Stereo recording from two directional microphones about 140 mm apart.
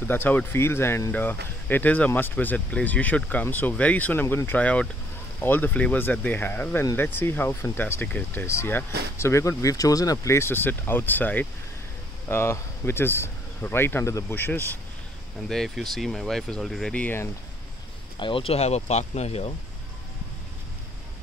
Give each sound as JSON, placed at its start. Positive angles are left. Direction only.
{"t": 0.1, "sound": "speech", "side_deg": 15}
{"t": 15.4, "sound": "speech", "side_deg": 0}
{"t": 18.2, "sound": "speech", "side_deg": 40}